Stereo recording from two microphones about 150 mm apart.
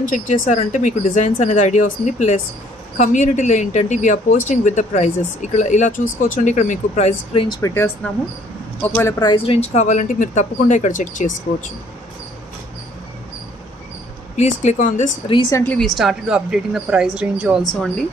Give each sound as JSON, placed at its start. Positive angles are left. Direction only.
{"t": 0.1, "sound": "a woman's voice", "side_deg": 55}
{"t": 7.6, "sound": "speech", "side_deg": 15}
{"t": 9.2, "sound": "speech", "side_deg": 35}
{"t": 14.3, "sound": "a woman's voice", "side_deg": 50}
{"t": 15.5, "sound": "speech", "side_deg": 15}
{"t": 15.8, "sound": "speech", "side_deg": 0}